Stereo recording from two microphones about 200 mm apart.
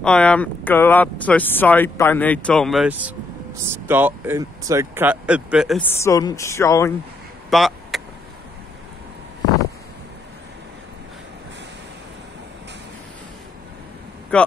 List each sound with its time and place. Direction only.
0.0 s speech: 5° left (ahead or behind)
5.8 s speech: 10° left (ahead or behind)
7.4 s vehicle: centre (ahead or behind)
14.3 s speech: 5° left (ahead or behind)